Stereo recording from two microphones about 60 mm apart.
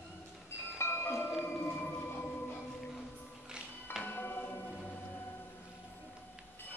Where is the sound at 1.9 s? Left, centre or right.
Left.